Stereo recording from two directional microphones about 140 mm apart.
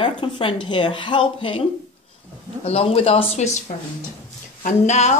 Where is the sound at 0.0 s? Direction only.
35° left (ahead or behind).